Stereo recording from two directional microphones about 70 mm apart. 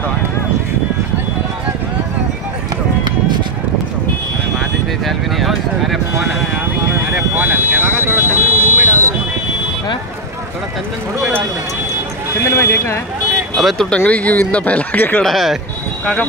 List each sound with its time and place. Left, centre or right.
5.0 s a sound: centre
7.3 s vehicle: right
12.4 s a sound: left
13.6 s speech: centre
13.8 s speech: centre
15.2 s speech: centre